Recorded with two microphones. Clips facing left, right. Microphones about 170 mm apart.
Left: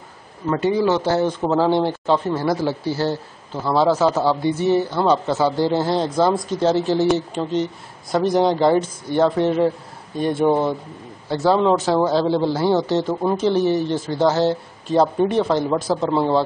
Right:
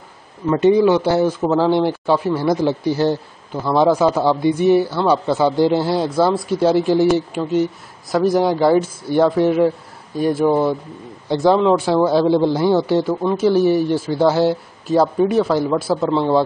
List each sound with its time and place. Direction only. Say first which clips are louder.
0.5 s speech: right 5 dB; 20° right (ahead or behind); by 10.7 s centre (ahead or behind)
11.2 s speech: right 3 dB; 15° right (ahead or behind)
16.1 s speech: right 1 dB; 10° left (ahead or behind)